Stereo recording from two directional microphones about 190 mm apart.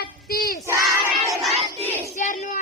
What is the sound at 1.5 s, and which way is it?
Battle cry, 30° right (ahead or behind).